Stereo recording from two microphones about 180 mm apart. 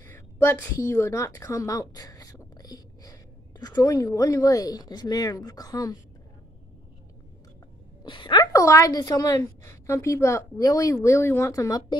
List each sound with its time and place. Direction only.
0.0 s a woman's voice: 15° left (ahead or behind)
8.0 s a woman's voice: 25° left (ahead or behind)